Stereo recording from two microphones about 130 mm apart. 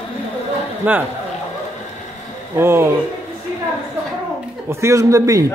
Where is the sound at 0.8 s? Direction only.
10° right (ahead or behind).